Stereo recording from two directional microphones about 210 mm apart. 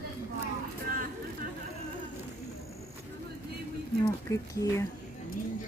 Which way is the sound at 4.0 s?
15° left (ahead or behind).